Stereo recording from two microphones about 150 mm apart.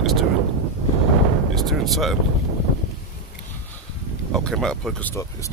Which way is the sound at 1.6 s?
Centre (ahead or behind).